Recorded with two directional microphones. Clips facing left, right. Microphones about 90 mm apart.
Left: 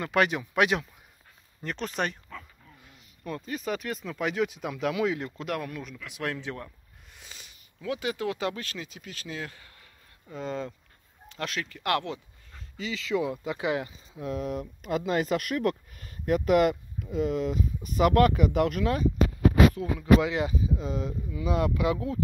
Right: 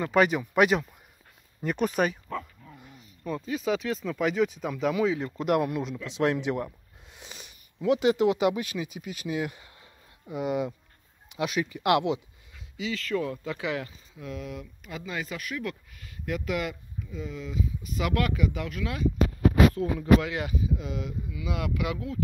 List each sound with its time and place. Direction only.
0.0 s speech: centre (ahead or behind)
3.3 s speech: centre (ahead or behind)
5.2 s speech: 10° right (ahead or behind)
12.7 s speech: 5° right (ahead or behind)
13.1 s speech: 10° left (ahead or behind)
13.6 s speech: 25° left (ahead or behind)
14.3 s speech: 45° left (ahead or behind)
20.2 s speech: 20° left (ahead or behind)